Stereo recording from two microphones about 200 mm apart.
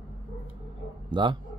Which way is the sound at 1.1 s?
25° right (ahead or behind).